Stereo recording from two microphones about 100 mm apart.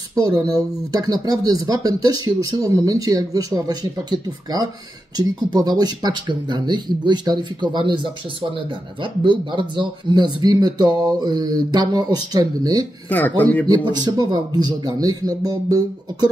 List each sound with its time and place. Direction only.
0.3 s speech: 40° right (ahead or behind)
13.4 s speech: 15° left (ahead or behind)
13.9 s speech: 40° right (ahead or behind)